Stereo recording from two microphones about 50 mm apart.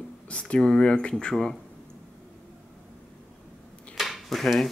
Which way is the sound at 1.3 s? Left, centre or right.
Centre.